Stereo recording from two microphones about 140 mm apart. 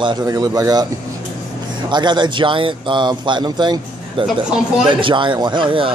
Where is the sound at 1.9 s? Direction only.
30° right (ahead or behind).